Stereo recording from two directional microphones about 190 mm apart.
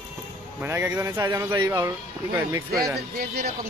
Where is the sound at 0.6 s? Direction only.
10° right (ahead or behind).